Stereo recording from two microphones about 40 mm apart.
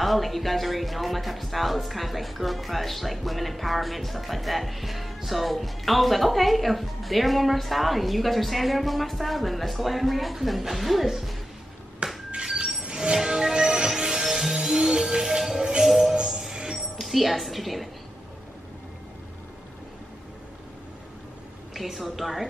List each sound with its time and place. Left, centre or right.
0.0 s speech: centre
12.0 s a sound: right
12.8 s music: right
16.7 s music: centre
21.7 s speech: centre